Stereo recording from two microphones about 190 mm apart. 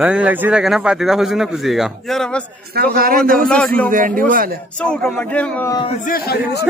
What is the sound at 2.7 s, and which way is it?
Speech, 55° right (ahead or behind).